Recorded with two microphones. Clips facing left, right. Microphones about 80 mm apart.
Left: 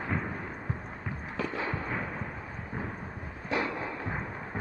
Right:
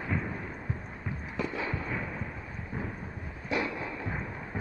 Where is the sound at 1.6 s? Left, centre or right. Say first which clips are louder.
Left 1 dB; left.